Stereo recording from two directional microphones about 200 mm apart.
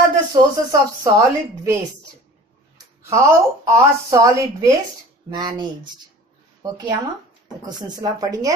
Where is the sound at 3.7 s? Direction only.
15° right (ahead or behind).